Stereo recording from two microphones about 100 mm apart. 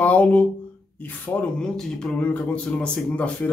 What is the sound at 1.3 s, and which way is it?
Speech, 25° left (ahead or behind).